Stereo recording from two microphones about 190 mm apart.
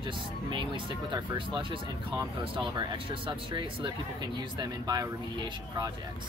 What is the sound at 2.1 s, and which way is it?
Speech, 25° right (ahead or behind).